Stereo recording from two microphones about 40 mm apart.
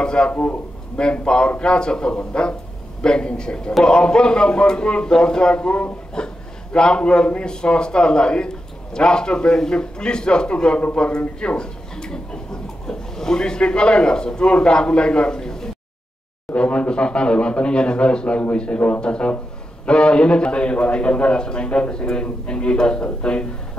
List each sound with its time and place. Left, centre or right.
0.0 s a man's voice: left
0.3 s speech: left
0.9 s a man's voice: left
16.5 s a man's voice: left